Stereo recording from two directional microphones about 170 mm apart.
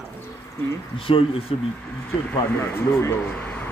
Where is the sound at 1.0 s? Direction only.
30° left (ahead or behind).